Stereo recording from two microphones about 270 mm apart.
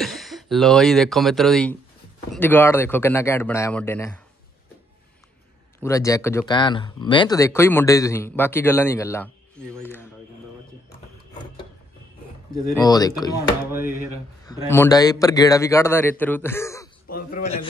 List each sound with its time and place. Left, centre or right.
0.0 s speech: centre
5.8 s speech: centre
12.7 s speech: centre
14.4 s speech: centre
17.1 s a man's voice: left